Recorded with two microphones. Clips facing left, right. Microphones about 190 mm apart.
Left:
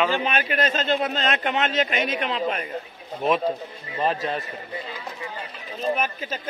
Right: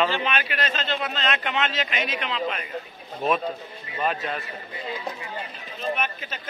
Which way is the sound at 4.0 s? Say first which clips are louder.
Left 3 dB; 35° left (ahead or behind).